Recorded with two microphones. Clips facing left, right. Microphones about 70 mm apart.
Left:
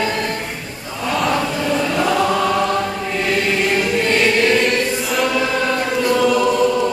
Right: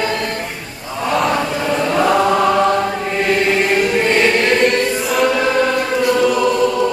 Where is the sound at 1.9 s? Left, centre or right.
Right.